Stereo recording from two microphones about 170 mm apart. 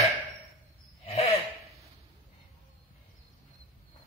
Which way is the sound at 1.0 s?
35° left (ahead or behind).